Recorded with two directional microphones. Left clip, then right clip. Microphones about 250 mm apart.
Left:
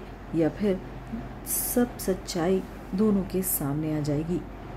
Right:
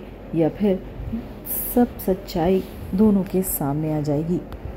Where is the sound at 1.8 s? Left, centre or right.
Centre.